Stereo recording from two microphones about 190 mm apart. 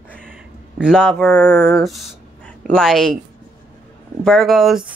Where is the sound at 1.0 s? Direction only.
10° left (ahead or behind).